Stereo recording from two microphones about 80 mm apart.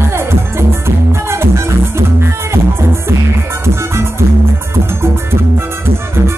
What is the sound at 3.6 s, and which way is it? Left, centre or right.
Music, right.